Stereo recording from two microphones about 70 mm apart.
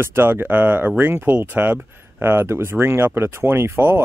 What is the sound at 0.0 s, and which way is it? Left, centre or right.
Speech, right.